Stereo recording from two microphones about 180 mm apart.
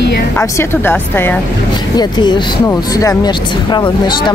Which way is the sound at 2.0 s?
25° left (ahead or behind).